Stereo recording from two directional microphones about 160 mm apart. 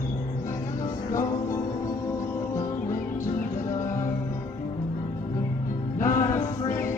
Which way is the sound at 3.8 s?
20° left (ahead or behind).